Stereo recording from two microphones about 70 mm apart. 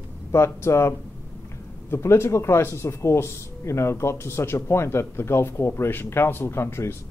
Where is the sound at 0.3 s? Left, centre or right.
Left.